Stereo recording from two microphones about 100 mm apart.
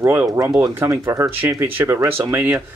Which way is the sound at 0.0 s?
20° right (ahead or behind).